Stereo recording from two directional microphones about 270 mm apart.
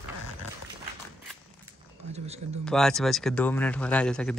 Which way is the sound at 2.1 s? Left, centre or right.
Right.